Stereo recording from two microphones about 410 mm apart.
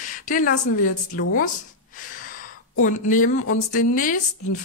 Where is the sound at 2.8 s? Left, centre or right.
Centre.